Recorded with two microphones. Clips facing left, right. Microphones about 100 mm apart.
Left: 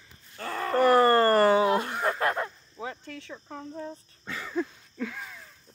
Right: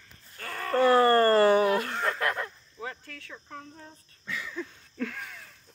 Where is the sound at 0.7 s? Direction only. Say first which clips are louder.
Even; 20° left (ahead or behind).